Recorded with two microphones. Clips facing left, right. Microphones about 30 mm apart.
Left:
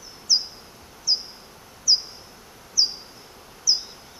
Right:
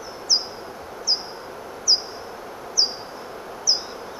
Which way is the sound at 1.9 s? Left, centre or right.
Centre.